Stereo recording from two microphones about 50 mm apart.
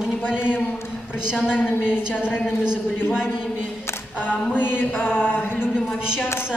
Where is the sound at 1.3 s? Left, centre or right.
Centre.